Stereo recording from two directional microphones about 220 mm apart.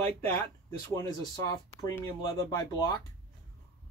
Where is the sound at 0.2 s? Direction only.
10° left (ahead or behind).